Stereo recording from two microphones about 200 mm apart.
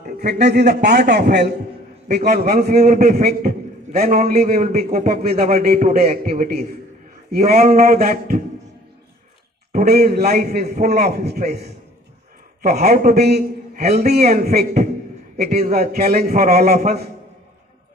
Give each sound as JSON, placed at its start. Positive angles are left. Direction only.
{"t": 0.0, "sound": "a man's voice", "side_deg": -55}
{"t": 4.8, "sound": "a man's voice", "side_deg": -35}
{"t": 5.4, "sound": "a man's voice", "side_deg": -50}
{"t": 9.7, "sound": "a man's voice", "side_deg": -45}
{"t": 12.6, "sound": "a man's voice", "side_deg": -50}